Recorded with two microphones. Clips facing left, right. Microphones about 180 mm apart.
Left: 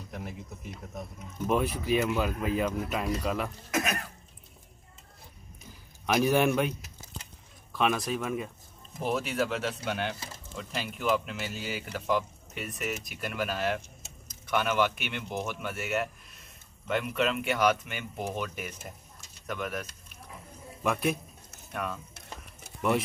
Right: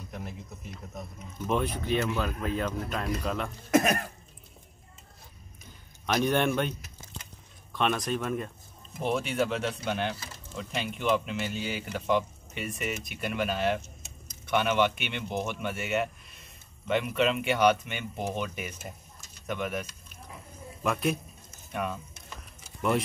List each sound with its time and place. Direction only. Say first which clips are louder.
0.1 s speech: left 1 dB; 10° left (ahead or behind)
3.7 s cough: right 7 dB; 45° right (ahead or behind)
6.0 s speech: left 1 dB; 5° left (ahead or behind)
7.7 s speech: even; centre (ahead or behind)
22.8 s speech: even; centre (ahead or behind)